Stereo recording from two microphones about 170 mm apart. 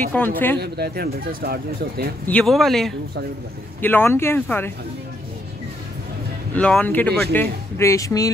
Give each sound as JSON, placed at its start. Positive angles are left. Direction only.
{"t": 0.1, "sound": "speech", "side_deg": 10}
{"t": 0.6, "sound": "speech", "side_deg": -70}
{"t": 2.2, "sound": "speech", "side_deg": 5}
{"t": 6.5, "sound": "speech", "side_deg": 10}